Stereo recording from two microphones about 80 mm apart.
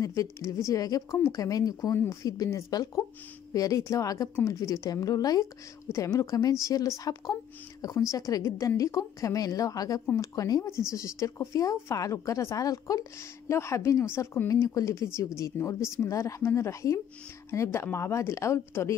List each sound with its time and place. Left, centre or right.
0.0 s speech: left
1.1 s speech: left
1.4 s speech: left
13.5 s speech: left
14.5 s speech: left